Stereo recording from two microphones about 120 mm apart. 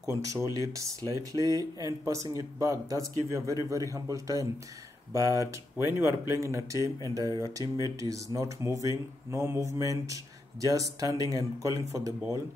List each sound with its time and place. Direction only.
0.0 s speech: 25° right (ahead or behind)